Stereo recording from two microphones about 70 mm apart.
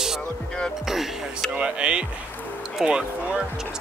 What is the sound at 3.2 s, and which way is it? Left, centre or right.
Speech, centre.